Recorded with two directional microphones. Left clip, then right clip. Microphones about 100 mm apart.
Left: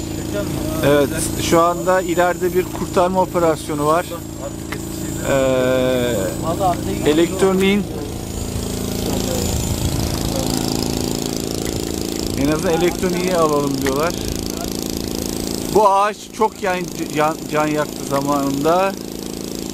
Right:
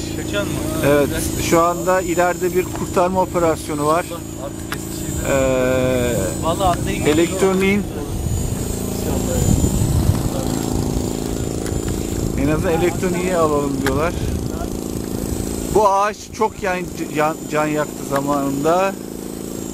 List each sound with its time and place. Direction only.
0.8 s speech: 10° left (ahead or behind)
5.2 s speech: 15° left (ahead or behind)
10.8 s a sound: 10° left (ahead or behind)
12.4 s speech: 10° left (ahead or behind)
15.7 s speech: 10° left (ahead or behind)